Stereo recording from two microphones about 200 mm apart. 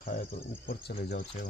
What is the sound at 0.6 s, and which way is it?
Speech, 55° left (ahead or behind).